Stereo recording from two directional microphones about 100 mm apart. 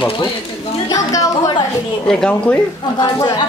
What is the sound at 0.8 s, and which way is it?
Speech, 35° left (ahead or behind).